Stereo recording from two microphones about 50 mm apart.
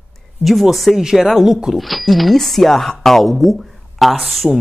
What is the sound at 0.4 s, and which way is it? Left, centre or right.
Speech, centre.